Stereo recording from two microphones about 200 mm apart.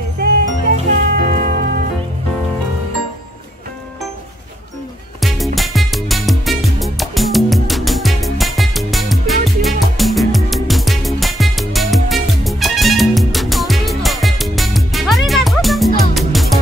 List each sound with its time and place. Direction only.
0.2 s music: 50° right (ahead or behind)
5.2 s music: centre (ahead or behind)